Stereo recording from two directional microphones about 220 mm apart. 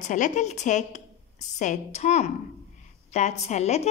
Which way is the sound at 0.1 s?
35° left (ahead or behind).